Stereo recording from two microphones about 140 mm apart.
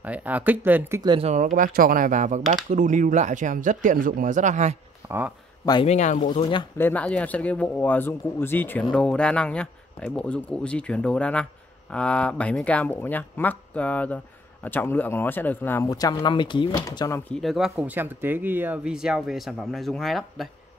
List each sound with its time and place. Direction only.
0.0 s speech: 10° right (ahead or behind)
1.2 s speech: 60° right (ahead or behind)
5.0 s speech: 15° right (ahead or behind)
5.9 s speech: 60° left (ahead or behind)
6.8 s speech: 10° left (ahead or behind)
15.9 s speech: 25° left (ahead or behind)
17.3 s speech: centre (ahead or behind)